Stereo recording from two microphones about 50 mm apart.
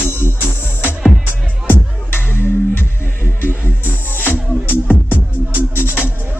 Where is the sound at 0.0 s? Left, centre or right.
Left.